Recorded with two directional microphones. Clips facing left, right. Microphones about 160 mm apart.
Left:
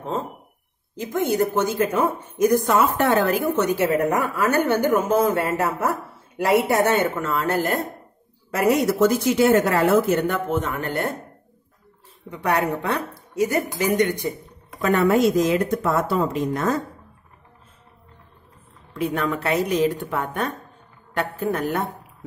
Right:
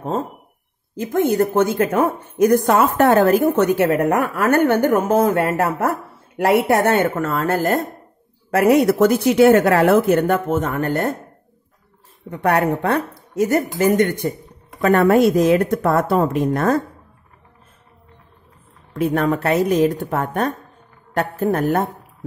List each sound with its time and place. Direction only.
0.9 s a woman's voice: 60° right (ahead or behind)
12.3 s a woman's voice: 55° right (ahead or behind)
18.9 s a woman's voice: 45° right (ahead or behind)